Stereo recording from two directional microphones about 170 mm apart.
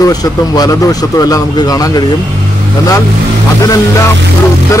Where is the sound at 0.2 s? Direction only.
20° left (ahead or behind).